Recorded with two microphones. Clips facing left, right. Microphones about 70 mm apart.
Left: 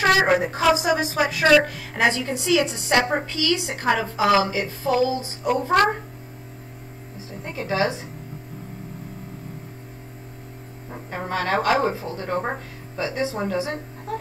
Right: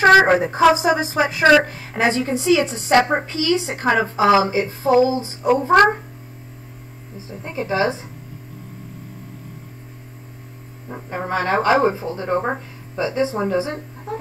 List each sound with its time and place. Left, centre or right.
0.0 s a woman's voice: right
7.2 s speech: right
11.1 s speech: right